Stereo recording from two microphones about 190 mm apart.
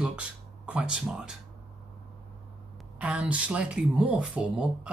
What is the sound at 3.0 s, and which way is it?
Speech, 5° right (ahead or behind).